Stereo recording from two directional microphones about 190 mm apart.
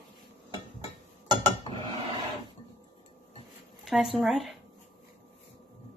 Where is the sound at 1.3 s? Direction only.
25° right (ahead or behind).